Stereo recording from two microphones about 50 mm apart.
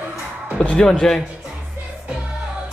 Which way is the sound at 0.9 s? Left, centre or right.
Centre.